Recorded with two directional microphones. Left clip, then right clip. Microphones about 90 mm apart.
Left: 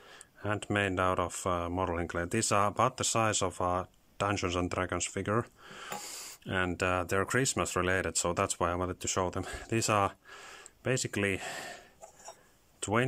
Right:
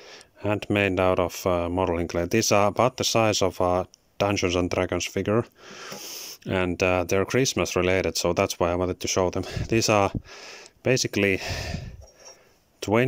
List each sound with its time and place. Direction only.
0.1 s a sound: 45° right (ahead or behind)
0.7 s speech: 40° right (ahead or behind)
6.8 s speech: 35° right (ahead or behind)
12.8 s speech: 35° right (ahead or behind)